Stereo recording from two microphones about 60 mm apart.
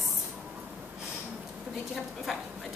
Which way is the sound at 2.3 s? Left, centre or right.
Centre.